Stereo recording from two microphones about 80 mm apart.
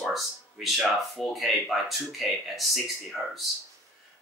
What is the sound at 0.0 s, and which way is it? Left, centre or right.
Speech, centre.